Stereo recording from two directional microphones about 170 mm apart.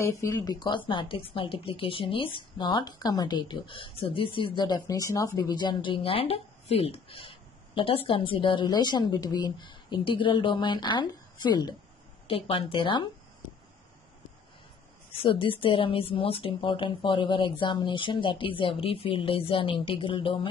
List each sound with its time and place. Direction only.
0.0 s a woman's voice: 15° left (ahead or behind)
15.2 s a woman's voice: 30° left (ahead or behind)